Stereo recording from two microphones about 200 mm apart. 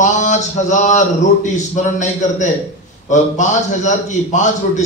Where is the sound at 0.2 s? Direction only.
35° left (ahead or behind).